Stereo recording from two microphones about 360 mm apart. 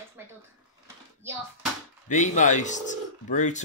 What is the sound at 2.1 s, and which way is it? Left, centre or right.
Speech, centre.